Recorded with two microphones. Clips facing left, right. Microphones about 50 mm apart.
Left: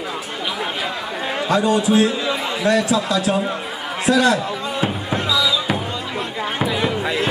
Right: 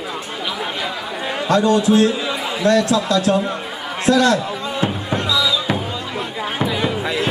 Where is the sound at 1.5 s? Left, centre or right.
Centre.